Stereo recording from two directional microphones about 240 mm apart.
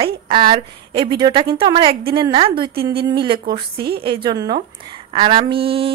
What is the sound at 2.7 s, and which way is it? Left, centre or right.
Speech, right.